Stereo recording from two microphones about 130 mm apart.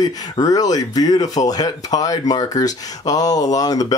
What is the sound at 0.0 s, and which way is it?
Speech, 30° left (ahead or behind).